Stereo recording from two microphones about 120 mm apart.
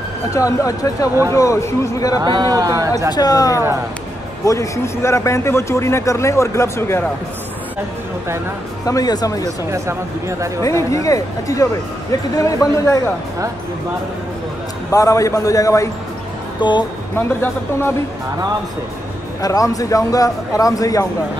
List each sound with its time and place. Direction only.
0.3 s a man's voice: 30° left (ahead or behind)
2.2 s speech: 35° right (ahead or behind)
3.1 s a man's voice: 35° left (ahead or behind)
8.8 s speech: 30° left (ahead or behind)
9.7 s speech: 25° right (ahead or behind)
10.6 s a man's voice: 25° left (ahead or behind)
14.9 s a man's voice: 25° left (ahead or behind)
16.6 s speech: 40° left (ahead or behind)
17.1 s a man's voice: 20° left (ahead or behind)
19.4 s a man's voice: 30° left (ahead or behind)